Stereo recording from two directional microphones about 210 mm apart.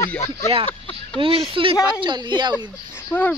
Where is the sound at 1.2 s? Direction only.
25° right (ahead or behind).